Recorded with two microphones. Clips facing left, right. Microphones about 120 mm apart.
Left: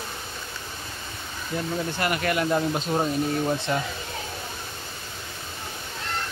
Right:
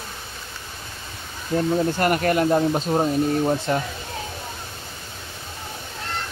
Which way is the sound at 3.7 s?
45° right (ahead or behind).